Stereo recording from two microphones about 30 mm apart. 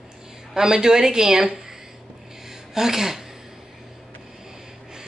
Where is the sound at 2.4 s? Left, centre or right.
Centre.